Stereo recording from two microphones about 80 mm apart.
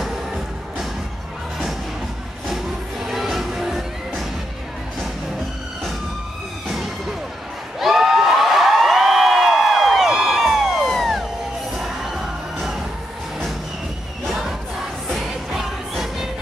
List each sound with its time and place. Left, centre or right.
0.0 s music: centre
2.4 s music: centre
6.7 s music: centre
7.8 s a sound: centre
11.7 s crowd: centre
14.2 s music: centre